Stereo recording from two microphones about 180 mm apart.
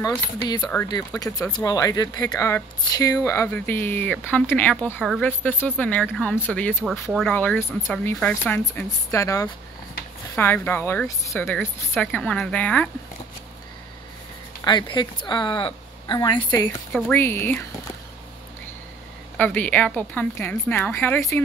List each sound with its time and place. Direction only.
0.8 s speech: 20° left (ahead or behind)
14.6 s a woman's voice: 25° left (ahead or behind)
16.3 s speech: 10° left (ahead or behind)
19.3 s speech: 10° left (ahead or behind)